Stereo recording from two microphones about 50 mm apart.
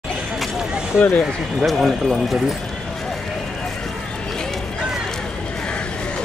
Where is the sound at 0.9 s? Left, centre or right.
Left.